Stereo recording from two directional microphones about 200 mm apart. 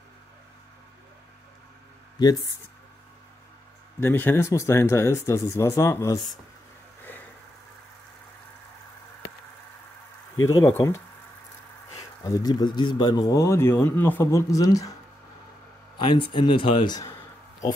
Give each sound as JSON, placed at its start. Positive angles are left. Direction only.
{"t": 4.0, "sound": "speech", "side_deg": 10}
{"t": 10.5, "sound": "speech", "side_deg": 15}
{"t": 12.2, "sound": "speech", "side_deg": 15}
{"t": 16.0, "sound": "speech", "side_deg": 25}